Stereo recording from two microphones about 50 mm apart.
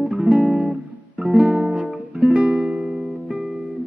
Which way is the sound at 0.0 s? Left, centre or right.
Right.